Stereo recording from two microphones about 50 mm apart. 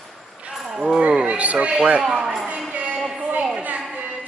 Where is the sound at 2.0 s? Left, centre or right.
Centre.